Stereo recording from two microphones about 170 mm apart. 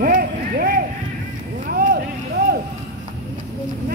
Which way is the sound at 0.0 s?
55° right (ahead or behind).